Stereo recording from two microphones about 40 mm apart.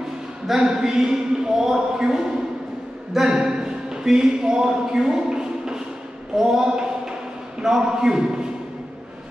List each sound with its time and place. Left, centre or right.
0.5 s speech: centre
6.3 s a sound: centre
7.6 s speech: centre